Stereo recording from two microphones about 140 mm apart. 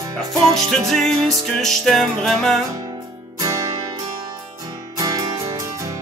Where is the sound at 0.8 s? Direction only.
5° left (ahead or behind).